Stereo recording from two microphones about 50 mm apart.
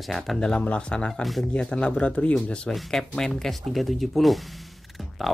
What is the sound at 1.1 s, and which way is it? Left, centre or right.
Speech, centre.